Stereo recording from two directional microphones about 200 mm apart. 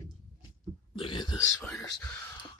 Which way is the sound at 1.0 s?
25° left (ahead or behind).